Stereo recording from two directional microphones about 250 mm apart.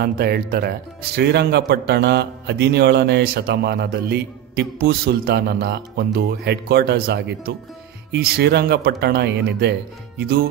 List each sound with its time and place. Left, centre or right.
0.0 s speech: right